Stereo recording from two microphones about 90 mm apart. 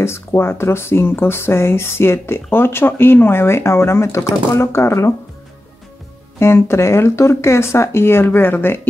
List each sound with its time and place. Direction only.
0.0 s speech: 30° left (ahead or behind)
6.4 s speech: 30° left (ahead or behind)